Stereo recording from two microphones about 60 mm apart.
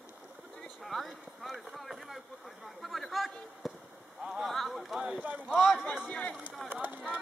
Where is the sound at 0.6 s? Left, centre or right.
Centre.